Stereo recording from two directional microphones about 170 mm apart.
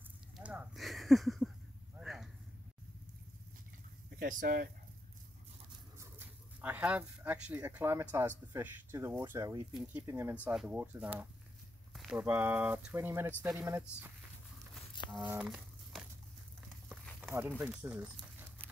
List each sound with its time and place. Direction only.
0.4 s a sound: 5° right (ahead or behind)
4.2 s speech: 55° right (ahead or behind)
5.7 s speech: 15° right (ahead or behind)
15.2 s crumpling: 5° right (ahead or behind)
17.2 s speech: 10° right (ahead or behind)